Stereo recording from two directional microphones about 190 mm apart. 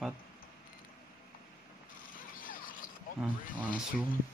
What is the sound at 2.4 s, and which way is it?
Mechanisms, 45° left (ahead or behind).